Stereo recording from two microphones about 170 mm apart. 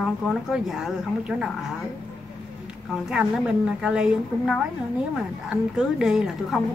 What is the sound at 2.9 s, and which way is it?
Speech, 5° right (ahead or behind).